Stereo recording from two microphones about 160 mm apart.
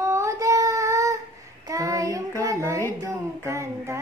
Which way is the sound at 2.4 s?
20° right (ahead or behind).